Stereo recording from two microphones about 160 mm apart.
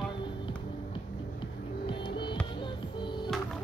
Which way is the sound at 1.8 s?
30° left (ahead or behind).